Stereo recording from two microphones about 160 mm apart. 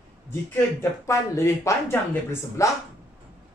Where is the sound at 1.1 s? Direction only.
20° left (ahead or behind).